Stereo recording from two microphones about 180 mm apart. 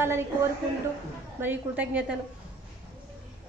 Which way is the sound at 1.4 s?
10° right (ahead or behind).